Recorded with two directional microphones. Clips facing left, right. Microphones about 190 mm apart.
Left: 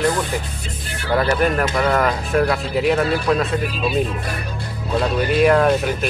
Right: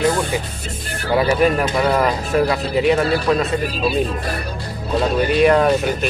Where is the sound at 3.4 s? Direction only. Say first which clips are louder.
Right 2 dB; 40° right (ahead or behind).